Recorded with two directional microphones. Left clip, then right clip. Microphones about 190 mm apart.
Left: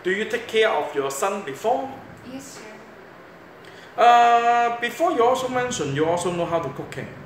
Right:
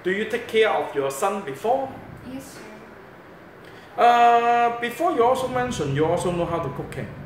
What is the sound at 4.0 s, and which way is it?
A man's voice, 10° left (ahead or behind).